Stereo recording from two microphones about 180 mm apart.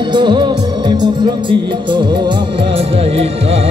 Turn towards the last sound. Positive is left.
turn(degrees=-35)  # may be behind; listen again after turning